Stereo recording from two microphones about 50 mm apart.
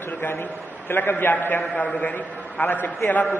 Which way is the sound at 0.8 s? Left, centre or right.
Left.